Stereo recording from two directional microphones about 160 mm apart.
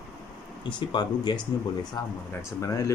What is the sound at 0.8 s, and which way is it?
Speech, 30° left (ahead or behind).